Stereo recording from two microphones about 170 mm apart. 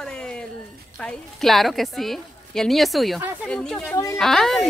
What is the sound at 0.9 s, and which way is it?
Speech, 5° left (ahead or behind).